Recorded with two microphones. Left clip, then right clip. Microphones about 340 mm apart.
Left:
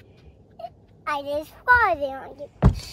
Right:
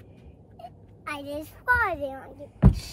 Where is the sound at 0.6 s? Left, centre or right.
Centre.